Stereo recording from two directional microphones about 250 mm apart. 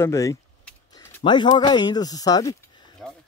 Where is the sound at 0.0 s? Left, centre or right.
Centre.